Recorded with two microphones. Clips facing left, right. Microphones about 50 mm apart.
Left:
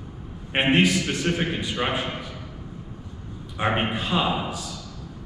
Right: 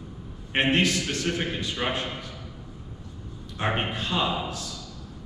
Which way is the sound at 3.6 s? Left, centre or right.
Left.